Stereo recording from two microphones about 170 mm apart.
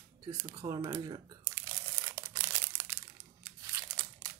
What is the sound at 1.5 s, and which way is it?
Crumpling, 15° right (ahead or behind).